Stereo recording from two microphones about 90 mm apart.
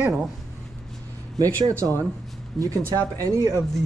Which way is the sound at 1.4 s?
40° right (ahead or behind).